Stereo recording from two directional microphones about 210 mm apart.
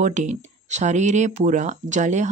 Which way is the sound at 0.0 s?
35° right (ahead or behind).